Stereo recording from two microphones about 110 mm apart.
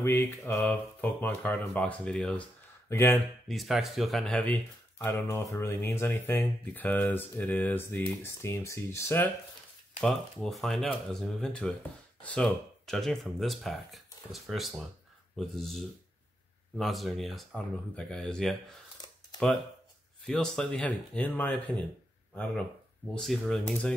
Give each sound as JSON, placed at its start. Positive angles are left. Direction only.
{"t": 0.0, "sound": "speech", "side_deg": 25}
{"t": 1.0, "sound": "speech", "side_deg": 15}
{"t": 2.9, "sound": "speech", "side_deg": 25}
{"t": 3.4, "sound": "speech", "side_deg": 0}
{"t": 5.3, "sound": "speech", "side_deg": 25}
{"t": 9.9, "sound": "speech", "side_deg": 0}
{"t": 20.2, "sound": "speech", "side_deg": 5}